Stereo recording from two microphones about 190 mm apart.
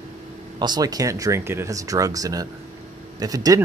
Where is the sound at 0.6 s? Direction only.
20° right (ahead or behind).